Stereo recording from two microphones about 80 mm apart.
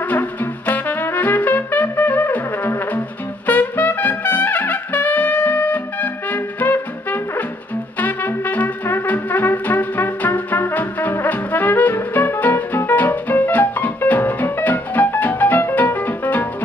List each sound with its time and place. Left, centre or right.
0.1 s music: left
3.4 s trumpet: left